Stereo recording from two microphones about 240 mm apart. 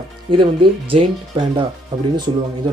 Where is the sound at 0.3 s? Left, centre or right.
Right.